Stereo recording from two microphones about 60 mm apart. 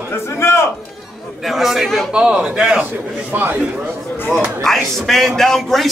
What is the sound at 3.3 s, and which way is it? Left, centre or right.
Speech, right.